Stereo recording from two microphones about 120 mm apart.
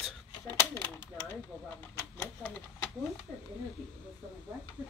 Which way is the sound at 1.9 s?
20° left (ahead or behind).